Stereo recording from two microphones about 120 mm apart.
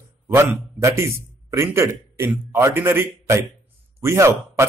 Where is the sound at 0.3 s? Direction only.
25° right (ahead or behind).